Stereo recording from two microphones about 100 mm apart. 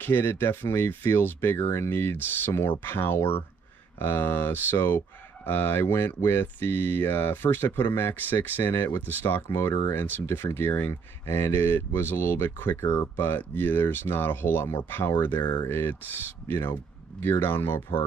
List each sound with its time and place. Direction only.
0.0 s speech: 20° left (ahead or behind)